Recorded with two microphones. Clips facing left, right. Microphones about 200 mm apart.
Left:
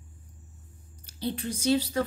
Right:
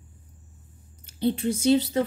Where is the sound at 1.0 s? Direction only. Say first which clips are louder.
Right 8 dB; 25° right (ahead or behind).